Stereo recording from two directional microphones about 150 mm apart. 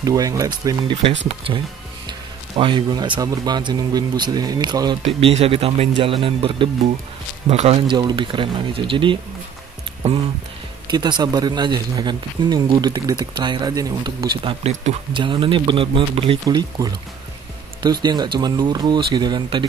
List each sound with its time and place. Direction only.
0.0 s speech: 25° right (ahead or behind)
5.0 s speech: 40° right (ahead or behind)
10.9 s speech: 30° right (ahead or behind)
14.7 s speech: 50° right (ahead or behind)
15.1 s speech: 35° right (ahead or behind)
18.0 s speech: 30° right (ahead or behind)